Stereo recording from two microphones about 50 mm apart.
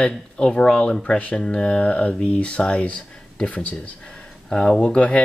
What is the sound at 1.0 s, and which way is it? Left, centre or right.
Speech, left.